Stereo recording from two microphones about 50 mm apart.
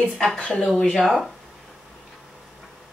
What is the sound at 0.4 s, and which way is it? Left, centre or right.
Speech, left.